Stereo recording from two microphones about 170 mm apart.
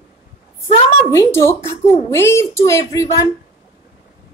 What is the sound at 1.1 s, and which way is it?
A child's voice, 15° left (ahead or behind).